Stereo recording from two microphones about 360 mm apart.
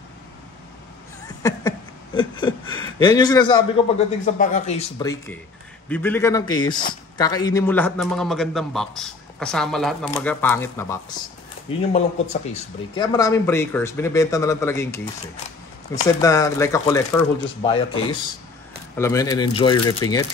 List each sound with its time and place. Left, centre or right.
2.1 s a man's voice: centre